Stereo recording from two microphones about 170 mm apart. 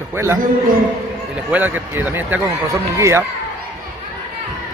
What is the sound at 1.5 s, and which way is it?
Speech, 10° right (ahead or behind).